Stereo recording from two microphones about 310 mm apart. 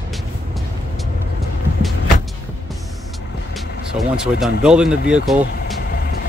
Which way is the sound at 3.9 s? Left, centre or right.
Centre.